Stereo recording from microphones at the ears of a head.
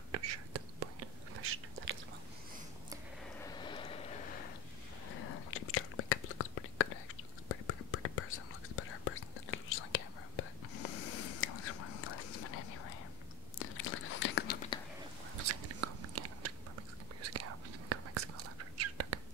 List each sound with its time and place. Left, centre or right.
0.1 s whispering: right
3.5 s a sound: left
5.1 s whispering: left
15.3 s biting: right
17.2 s whispering: right